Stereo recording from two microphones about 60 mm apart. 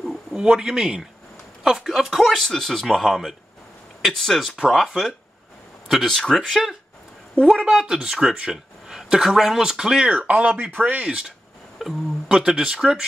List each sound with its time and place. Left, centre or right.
0.0 s a sound: centre
0.4 s speech: centre
4.6 s speech: centre
5.9 s speech: centre
10.1 s speech: right
11.1 s speech: centre
12.3 s speech: centre